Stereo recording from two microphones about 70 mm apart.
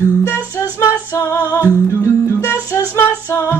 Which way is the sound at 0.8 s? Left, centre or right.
Left.